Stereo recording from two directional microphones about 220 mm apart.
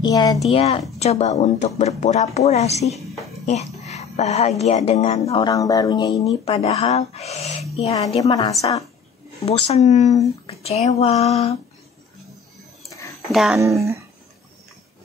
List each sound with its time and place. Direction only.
0.0 s a woman's voice: 20° left (ahead or behind)
5.3 s speech: 20° left (ahead or behind)
6.4 s speech: 30° left (ahead or behind)
12.9 s a sound: 15° left (ahead or behind)
13.3 s speech: centre (ahead or behind)
13.6 s speech: 15° right (ahead or behind)